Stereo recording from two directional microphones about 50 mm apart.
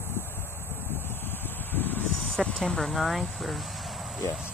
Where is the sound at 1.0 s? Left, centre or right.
Left.